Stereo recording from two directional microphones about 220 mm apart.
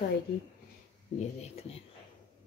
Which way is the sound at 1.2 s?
30° left (ahead or behind).